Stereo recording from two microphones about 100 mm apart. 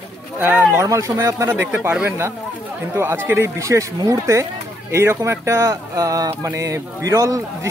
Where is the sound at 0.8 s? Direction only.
30° right (ahead or behind).